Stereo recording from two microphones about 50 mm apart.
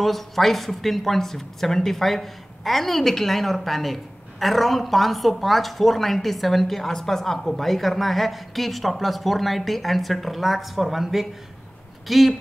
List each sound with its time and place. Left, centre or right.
0.0 s speech: centre